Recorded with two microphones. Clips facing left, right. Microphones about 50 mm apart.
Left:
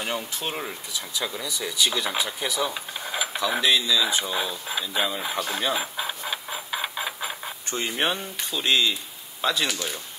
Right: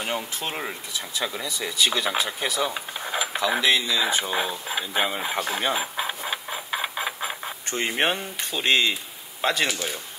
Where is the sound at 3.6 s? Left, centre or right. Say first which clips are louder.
Left 2 dB; right.